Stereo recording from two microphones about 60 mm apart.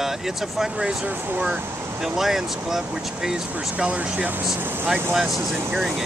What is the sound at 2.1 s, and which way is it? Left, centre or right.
Speech, centre.